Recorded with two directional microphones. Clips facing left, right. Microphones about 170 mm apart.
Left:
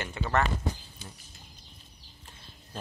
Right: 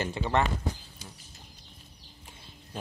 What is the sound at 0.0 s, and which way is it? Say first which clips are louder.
Speech: right 3 dB; 25° right (ahead or behind).